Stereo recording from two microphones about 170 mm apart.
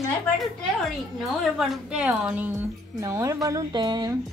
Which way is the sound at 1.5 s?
Centre (ahead or behind).